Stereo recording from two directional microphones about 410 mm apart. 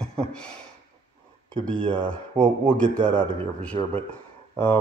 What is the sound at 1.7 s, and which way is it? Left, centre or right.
A man's voice, centre.